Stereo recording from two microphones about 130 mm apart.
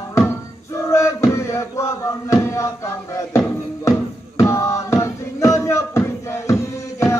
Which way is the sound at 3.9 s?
25° left (ahead or behind).